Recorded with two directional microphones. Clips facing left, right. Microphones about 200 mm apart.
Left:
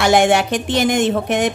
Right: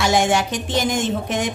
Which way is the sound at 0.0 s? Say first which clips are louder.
Left 4 dB; 60° left (ahead or behind).